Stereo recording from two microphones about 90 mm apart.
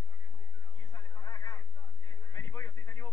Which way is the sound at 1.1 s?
50° left (ahead or behind).